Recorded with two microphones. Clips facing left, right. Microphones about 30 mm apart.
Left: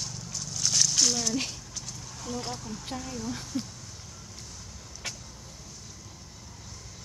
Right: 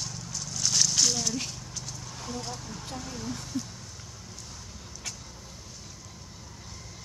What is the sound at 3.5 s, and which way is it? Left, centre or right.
Speech, left.